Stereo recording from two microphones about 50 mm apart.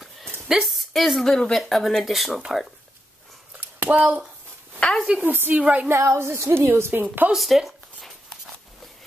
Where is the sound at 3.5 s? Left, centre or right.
Right.